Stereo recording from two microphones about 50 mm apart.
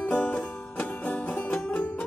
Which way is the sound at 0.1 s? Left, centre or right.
Left.